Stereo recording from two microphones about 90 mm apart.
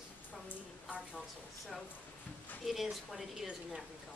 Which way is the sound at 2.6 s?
Centre (ahead or behind).